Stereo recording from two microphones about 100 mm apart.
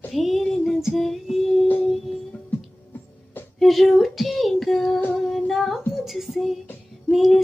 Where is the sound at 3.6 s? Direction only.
Centre (ahead or behind).